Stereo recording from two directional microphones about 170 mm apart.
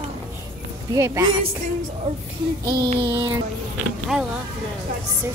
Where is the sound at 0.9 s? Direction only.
20° right (ahead or behind).